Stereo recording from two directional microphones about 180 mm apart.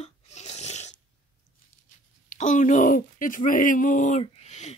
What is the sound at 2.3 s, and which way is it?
Speech, 45° left (ahead or behind).